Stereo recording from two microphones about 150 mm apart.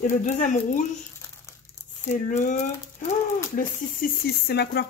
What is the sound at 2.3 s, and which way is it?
Speech, 55° left (ahead or behind).